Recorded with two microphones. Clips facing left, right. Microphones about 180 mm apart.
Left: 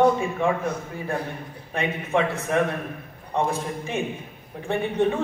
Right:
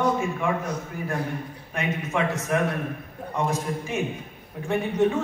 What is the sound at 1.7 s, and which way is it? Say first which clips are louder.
A man's voice: left 3 dB; 30° left (ahead or behind).